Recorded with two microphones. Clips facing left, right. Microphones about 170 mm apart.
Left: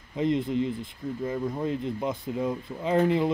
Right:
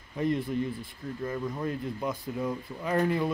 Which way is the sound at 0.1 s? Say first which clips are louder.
Left 3 dB; 20° left (ahead or behind).